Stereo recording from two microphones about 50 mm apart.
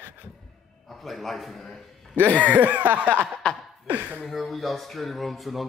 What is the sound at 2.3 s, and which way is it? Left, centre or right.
Snicker, right.